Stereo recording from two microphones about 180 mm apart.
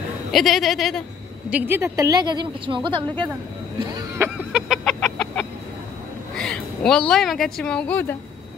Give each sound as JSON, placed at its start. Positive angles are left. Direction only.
{"t": 0.3, "sound": "a woman's voice", "side_deg": 0}
{"t": 1.5, "sound": "a woman's voice", "side_deg": -15}
{"t": 4.5, "sound": "chicken", "side_deg": -5}
{"t": 6.3, "sound": "a woman's voice", "side_deg": 5}